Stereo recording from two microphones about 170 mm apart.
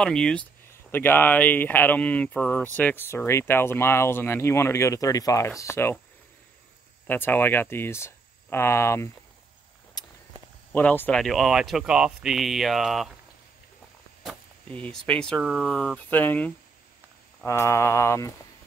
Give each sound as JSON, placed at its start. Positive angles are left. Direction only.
{"t": 0.0, "sound": "speech", "side_deg": 5}
{"t": 7.1, "sound": "speech", "side_deg": 10}
{"t": 10.0, "sound": "walk", "side_deg": 25}
{"t": 10.7, "sound": "speech", "side_deg": 10}
{"t": 14.7, "sound": "speech", "side_deg": 10}